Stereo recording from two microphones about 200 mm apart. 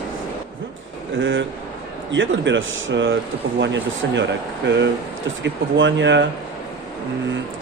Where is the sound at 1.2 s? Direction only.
70° right (ahead or behind).